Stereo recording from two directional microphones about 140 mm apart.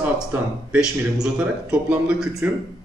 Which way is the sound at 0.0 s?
10° right (ahead or behind).